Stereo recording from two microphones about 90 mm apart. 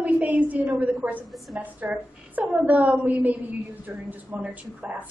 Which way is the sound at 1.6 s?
15° right (ahead or behind).